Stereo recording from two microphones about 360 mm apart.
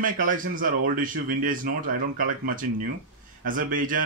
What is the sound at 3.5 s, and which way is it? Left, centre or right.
Speech, right.